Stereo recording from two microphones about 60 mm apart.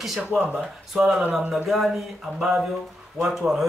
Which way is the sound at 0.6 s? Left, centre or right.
Centre.